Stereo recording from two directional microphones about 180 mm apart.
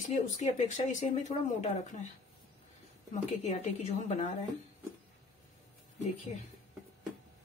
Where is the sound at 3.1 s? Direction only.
40° left (ahead or behind).